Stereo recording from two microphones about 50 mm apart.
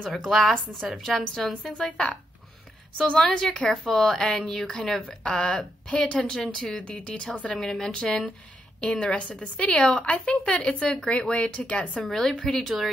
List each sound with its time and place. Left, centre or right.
0.3 s a woman's voice: centre
1.9 s speech: left
3.2 s a woman's voice: centre
6.8 s speech: left
7.6 s a woman's voice: centre
12.1 s a woman's voice: centre
12.6 s a woman's voice: centre